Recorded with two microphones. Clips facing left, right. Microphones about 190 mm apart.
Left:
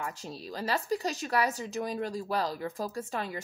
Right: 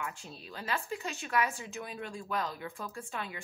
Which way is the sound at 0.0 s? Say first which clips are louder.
Left 4 dB; 40° left (ahead or behind).